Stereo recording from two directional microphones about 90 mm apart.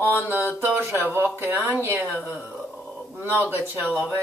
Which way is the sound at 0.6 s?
25° right (ahead or behind).